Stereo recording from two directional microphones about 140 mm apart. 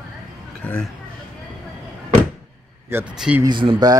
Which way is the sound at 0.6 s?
10° left (ahead or behind).